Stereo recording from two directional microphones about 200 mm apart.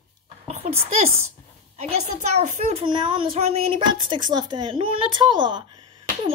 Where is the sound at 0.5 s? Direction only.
30° right (ahead or behind).